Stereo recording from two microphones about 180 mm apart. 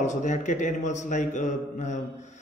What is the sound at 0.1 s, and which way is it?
A man's voice, 40° left (ahead or behind).